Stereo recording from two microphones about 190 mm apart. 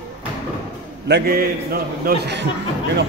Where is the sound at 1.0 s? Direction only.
60° right (ahead or behind).